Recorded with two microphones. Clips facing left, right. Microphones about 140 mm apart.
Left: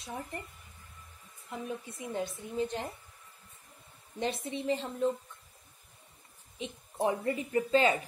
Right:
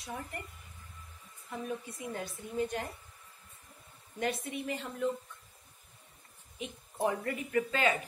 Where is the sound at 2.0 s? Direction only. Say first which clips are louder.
Left 3 dB; 25° left (ahead or behind).